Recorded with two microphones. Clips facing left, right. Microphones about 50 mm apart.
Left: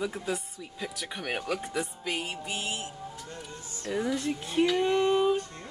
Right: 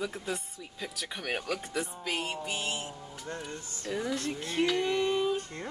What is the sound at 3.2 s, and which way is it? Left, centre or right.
Speech, right.